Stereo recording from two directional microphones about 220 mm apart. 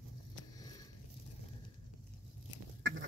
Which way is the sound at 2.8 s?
55° right (ahead or behind).